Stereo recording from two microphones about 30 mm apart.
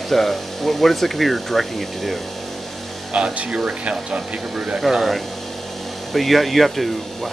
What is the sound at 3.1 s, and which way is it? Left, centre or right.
Speech, right.